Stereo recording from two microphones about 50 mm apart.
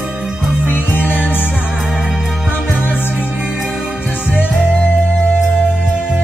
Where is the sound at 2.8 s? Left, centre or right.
Left.